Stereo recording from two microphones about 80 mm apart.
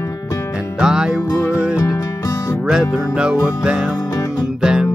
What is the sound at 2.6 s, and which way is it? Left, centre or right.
Music, centre.